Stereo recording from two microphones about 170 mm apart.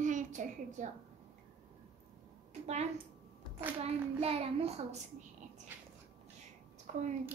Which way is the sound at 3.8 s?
35° right (ahead or behind).